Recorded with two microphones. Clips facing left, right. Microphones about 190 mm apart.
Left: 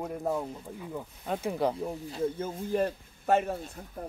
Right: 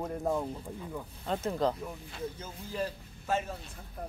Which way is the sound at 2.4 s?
55° left (ahead or behind).